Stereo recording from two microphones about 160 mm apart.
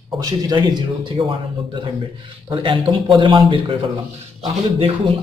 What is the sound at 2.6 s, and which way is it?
Speech, 30° right (ahead or behind).